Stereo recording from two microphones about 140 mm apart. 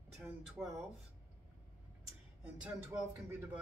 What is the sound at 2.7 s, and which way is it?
Speech, 15° right (ahead or behind).